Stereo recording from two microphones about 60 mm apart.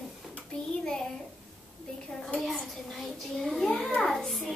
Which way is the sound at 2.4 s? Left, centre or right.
Centre.